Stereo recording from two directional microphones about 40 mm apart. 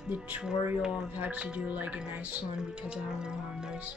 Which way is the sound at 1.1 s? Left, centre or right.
Right.